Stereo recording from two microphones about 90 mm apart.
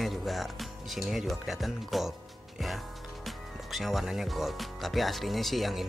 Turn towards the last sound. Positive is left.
turn(degrees=0)  # may be behind; listen again after turning